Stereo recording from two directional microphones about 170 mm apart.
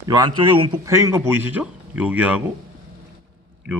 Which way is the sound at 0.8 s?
15° right (ahead or behind).